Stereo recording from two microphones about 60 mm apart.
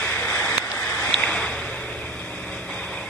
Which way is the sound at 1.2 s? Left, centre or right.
Centre.